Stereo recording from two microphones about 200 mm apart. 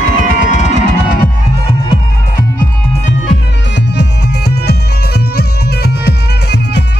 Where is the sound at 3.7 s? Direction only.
60° left (ahead or behind).